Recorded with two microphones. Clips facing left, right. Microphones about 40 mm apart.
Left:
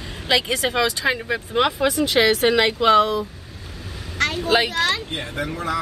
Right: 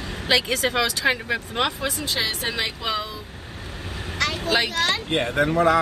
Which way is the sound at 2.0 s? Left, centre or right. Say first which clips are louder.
Left 11 dB; left.